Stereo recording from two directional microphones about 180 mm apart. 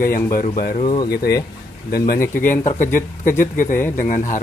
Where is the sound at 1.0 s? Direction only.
60° left (ahead or behind).